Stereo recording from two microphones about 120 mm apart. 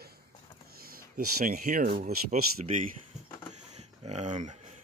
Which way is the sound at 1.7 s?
90° right.